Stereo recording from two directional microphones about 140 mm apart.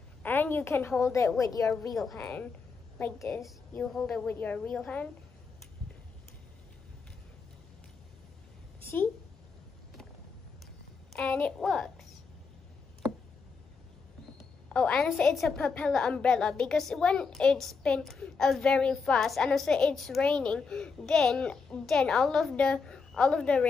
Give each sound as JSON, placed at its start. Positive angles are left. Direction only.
{"t": 0.2, "sound": "a woman's voice", "side_deg": 15}
{"t": 2.0, "sound": "a woman's voice", "side_deg": 0}
{"t": 3.7, "sound": "a woman's voice", "side_deg": 5}
{"t": 8.8, "sound": "a sound", "side_deg": 15}
{"t": 11.1, "sound": "a woman's voice", "side_deg": 10}
{"t": 14.7, "sound": "a woman's voice", "side_deg": 5}